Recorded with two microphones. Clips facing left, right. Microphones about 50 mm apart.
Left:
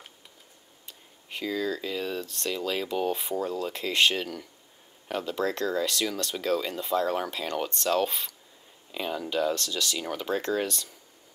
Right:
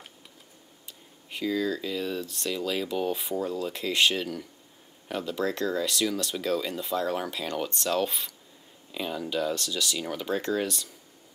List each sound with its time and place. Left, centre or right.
1.3 s speech: centre
2.2 s speech: centre
2.5 s speech: centre
9.6 s speech: centre
9.9 s speech: centre